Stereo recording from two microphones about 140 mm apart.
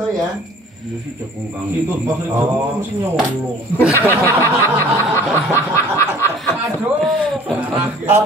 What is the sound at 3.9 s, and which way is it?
Speech, 15° left (ahead or behind).